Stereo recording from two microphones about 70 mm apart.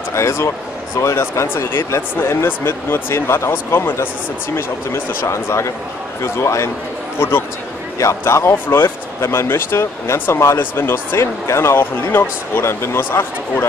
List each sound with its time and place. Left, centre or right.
0.1 s speech: left